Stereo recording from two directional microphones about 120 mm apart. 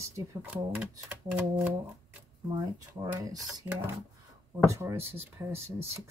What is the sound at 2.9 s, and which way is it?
Speech, 30° right (ahead or behind).